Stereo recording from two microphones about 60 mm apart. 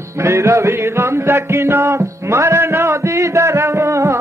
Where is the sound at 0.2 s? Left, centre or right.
Right.